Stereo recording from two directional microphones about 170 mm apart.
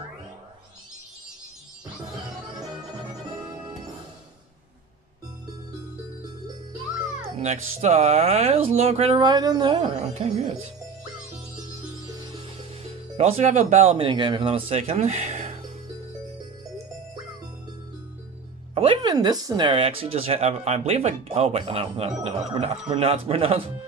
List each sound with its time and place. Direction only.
3.1 s music: 25° right (ahead or behind)
7.3 s speech: 40° right (ahead or behind); by 9.8 s 25° right (ahead or behind)
9.8 s speech: 40° right (ahead or behind)
13.2 s speech: 40° right (ahead or behind)
18.8 s speech: 30° right (ahead or behind)